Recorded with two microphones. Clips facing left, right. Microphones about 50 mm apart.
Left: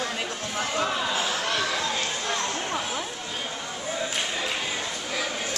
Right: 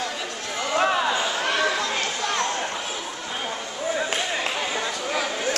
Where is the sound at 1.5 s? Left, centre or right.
Right.